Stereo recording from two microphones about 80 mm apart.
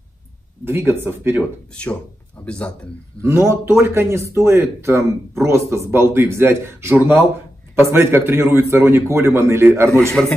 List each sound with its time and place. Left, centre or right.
0.7 s speech: right
2.4 s speech: centre
3.2 s a man's voice: right
10.2 s a man's voice: centre